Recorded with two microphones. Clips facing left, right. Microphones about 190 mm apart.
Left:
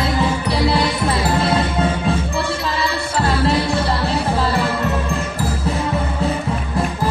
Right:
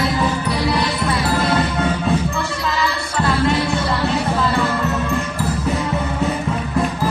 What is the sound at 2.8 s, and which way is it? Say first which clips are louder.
Music: even; 35° left (ahead or behind).